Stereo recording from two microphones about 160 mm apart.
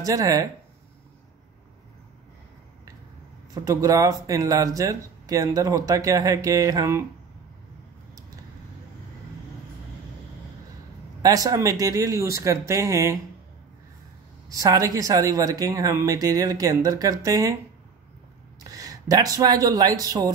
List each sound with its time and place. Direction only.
0.0 s speech: 20° right (ahead or behind)
3.5 s speech: 20° right (ahead or behind)
11.2 s speech: 20° right (ahead or behind)
14.5 s speech: 20° right (ahead or behind)
18.6 s speech: 20° right (ahead or behind)